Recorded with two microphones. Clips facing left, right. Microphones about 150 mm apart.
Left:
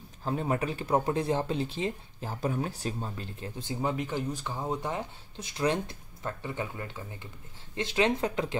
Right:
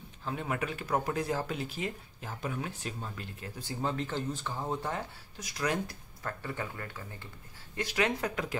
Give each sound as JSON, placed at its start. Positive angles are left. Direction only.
{"t": 0.2, "sound": "speech", "side_deg": 35}